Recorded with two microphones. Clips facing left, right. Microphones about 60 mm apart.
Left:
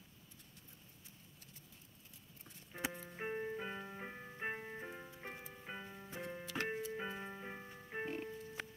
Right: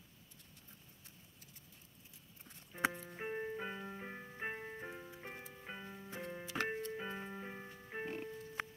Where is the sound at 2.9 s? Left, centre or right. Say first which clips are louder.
Even; centre.